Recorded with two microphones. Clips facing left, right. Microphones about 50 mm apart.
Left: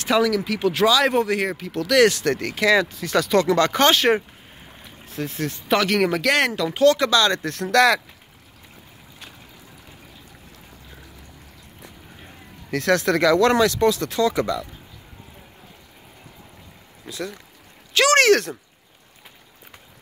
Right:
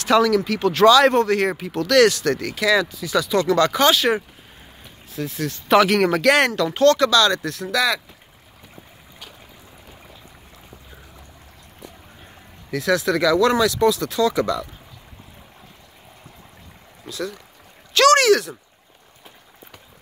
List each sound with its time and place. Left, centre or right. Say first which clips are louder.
0.4 s speech: right 3 dB; centre
1.5 s speech: right 2 dB; centre
2.0 s speech: right 1 dB; left
3.4 s speech: right 1 dB; left
5.7 s speech: right 4 dB; centre
7.0 s speech: right 2 dB; left
7.6 s speech: left 5 dB; left
12.7 s speech: even; left
18.1 s speech: right 1 dB; left